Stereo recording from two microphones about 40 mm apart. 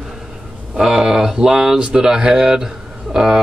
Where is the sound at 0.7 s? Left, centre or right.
Centre.